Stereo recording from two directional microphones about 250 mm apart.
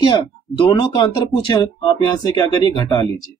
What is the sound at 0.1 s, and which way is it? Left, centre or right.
Speech, centre.